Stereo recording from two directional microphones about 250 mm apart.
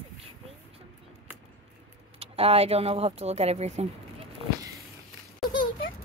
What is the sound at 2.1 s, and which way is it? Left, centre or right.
Speech, right.